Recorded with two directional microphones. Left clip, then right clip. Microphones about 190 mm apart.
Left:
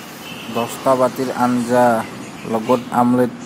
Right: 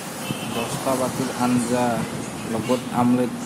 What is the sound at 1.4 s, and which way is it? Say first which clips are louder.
Speech: left 8 dB; 25° left (ahead or behind).